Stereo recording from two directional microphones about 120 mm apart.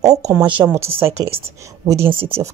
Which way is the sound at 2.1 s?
50° right (ahead or behind).